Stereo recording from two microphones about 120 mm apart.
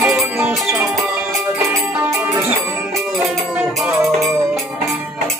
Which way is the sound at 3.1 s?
Centre (ahead or behind).